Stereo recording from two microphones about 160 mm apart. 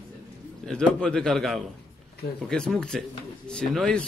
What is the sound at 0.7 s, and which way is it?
Speech, 5° left (ahead or behind).